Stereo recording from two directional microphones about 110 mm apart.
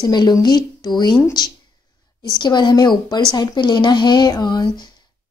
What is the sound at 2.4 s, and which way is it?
A woman's voice, 40° left (ahead or behind).